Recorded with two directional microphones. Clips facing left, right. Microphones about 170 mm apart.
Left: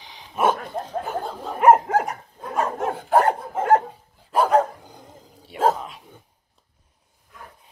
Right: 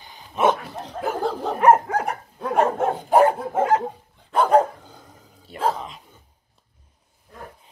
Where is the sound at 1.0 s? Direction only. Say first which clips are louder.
Right 5 dB; 85° right.